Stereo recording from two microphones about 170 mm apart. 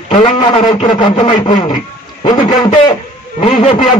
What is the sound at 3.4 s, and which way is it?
Speech, 35° left (ahead or behind).